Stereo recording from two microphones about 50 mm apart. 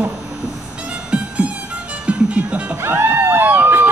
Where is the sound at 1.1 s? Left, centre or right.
Right.